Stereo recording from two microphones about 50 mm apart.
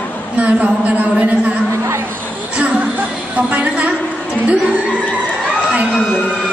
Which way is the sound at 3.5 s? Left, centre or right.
Right.